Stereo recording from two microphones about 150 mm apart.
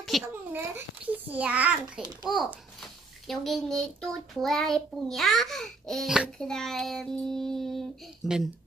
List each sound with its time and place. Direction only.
0.2 s a child's voice: 15° right (ahead or behind)